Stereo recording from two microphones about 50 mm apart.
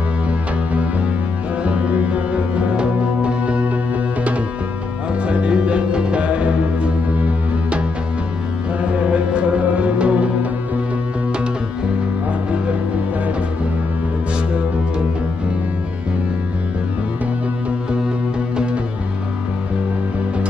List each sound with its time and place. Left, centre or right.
1.7 s music: right
8.9 s music: right